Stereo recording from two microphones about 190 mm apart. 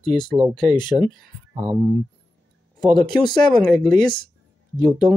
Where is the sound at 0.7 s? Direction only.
35° right (ahead or behind).